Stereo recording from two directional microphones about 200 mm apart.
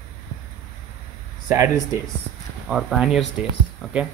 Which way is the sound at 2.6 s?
Centre (ahead or behind).